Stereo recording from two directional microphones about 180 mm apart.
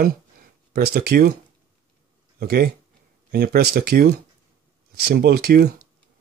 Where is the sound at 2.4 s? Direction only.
60° right (ahead or behind).